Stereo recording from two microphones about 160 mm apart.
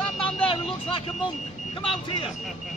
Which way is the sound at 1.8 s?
35° left (ahead or behind).